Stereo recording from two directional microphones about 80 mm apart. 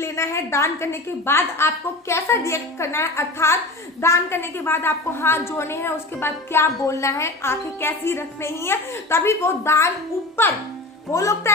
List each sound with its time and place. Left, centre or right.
0.0 s a woman's voice: left